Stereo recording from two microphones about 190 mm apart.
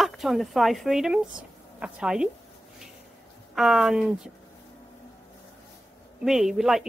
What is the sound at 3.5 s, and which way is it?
Speech, centre (ahead or behind).